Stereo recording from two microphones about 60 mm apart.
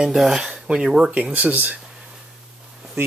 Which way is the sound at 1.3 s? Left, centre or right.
Right.